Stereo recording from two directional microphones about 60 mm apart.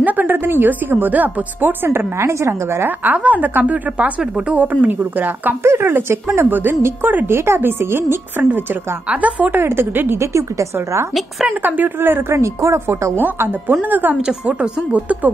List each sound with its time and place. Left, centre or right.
0.0 s a woman's voice: right
3.0 s a woman's voice: right
5.6 s speech: right
5.9 s a woman's voice: right
9.1 s a woman's voice: right
9.6 s speech: right
10.2 s a woman's voice: right
11.4 s a woman's voice: right
13.2 s a woman's voice: right
14.2 s a woman's voice: centre